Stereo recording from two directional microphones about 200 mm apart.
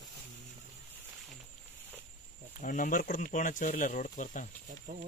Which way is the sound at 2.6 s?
40° left (ahead or behind).